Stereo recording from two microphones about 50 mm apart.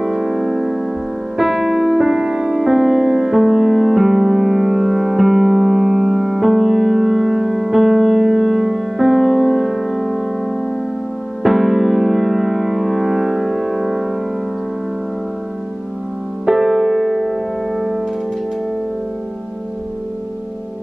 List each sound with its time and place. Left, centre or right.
0.0 s music: centre
11.4 s music: centre
16.4 s music: centre